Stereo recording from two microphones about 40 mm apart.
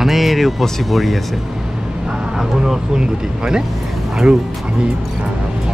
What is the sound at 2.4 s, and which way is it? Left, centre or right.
Speech, centre.